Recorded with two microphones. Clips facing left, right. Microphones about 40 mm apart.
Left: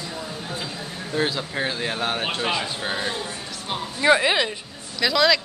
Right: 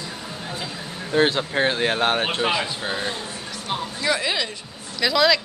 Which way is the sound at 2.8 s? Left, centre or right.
Centre.